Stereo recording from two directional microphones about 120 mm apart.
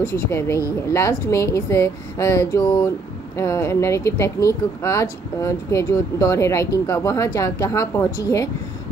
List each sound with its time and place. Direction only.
0.1 s speech: 20° left (ahead or behind)